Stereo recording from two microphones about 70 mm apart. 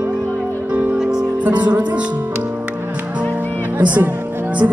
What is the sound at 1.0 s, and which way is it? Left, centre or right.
Music, centre.